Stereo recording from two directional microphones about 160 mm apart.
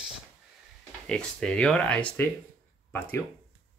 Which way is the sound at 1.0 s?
5° left (ahead or behind).